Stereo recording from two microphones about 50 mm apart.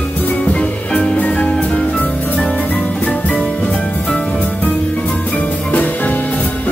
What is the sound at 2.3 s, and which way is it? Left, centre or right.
Music, centre.